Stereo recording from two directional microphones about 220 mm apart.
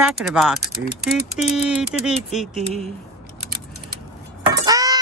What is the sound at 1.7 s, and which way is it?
Speech, 5° right (ahead or behind).